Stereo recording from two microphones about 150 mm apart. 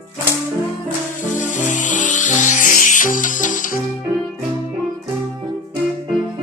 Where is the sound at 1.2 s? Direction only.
55° left (ahead or behind).